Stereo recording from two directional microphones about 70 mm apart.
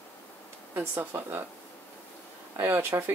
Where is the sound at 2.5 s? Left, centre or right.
Right.